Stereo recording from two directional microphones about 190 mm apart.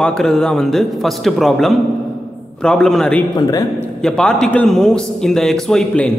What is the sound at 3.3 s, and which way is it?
Speech, 20° left (ahead or behind).